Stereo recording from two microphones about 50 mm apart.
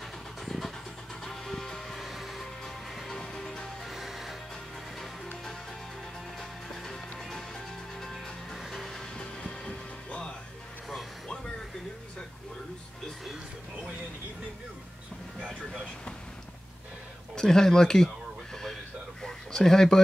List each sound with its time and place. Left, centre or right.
0.5 s vehicle: centre
1.2 s music: centre
3.8 s music: centre
6.7 s music: centre
8.5 s music: centre
8.8 s vehicle: centre
9.2 s music: centre
17.4 s a sound: centre